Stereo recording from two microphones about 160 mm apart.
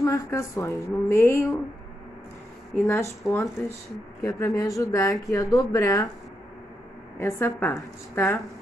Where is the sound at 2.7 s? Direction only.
15° left (ahead or behind).